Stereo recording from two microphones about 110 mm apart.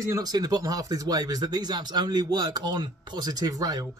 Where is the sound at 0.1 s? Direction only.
35° right (ahead or behind).